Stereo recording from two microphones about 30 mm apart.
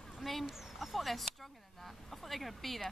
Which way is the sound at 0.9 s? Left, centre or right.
Centre.